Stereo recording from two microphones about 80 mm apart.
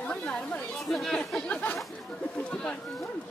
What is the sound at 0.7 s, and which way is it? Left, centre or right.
Speech, centre.